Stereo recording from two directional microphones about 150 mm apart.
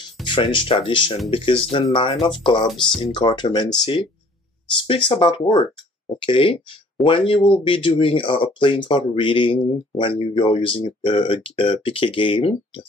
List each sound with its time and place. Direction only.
0.2 s speech: 35° left (ahead or behind)